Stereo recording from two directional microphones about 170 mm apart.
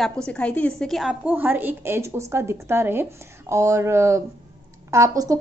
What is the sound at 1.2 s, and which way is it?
A woman's voice, 10° right (ahead or behind).